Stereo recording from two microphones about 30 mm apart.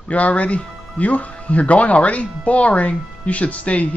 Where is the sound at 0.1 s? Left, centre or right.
Left.